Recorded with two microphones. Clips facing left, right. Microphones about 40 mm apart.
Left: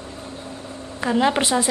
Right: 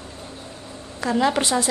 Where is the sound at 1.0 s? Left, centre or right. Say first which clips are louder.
Left 1 dB; left.